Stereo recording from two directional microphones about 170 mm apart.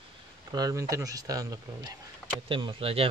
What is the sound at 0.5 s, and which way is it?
Speech, 20° right (ahead or behind).